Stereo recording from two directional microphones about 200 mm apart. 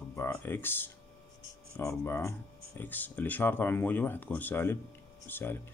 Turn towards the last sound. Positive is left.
turn(degrees=10)  # may be behind; listen again after turning